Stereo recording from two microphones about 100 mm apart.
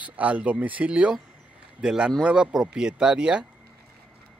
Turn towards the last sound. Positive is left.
turn(degrees=-10)  # may be behind; listen again after turning